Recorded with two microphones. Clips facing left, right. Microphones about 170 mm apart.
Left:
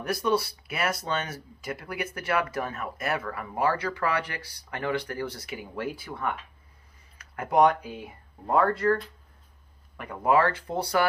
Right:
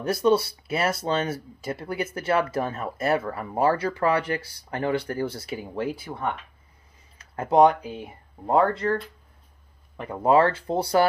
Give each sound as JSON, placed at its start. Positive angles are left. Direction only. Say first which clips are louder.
{"t": 0.0, "sound": "speech", "louder": "right 5 dB", "side_deg": -25}
{"t": 9.9, "sound": "speech", "louder": "right 4 dB", "side_deg": -25}